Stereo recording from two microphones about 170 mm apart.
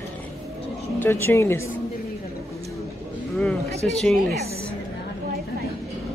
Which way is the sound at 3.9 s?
5° left (ahead or behind).